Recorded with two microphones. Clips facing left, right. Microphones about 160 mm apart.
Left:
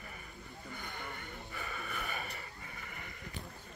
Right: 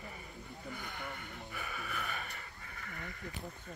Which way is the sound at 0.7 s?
Centre (ahead or behind).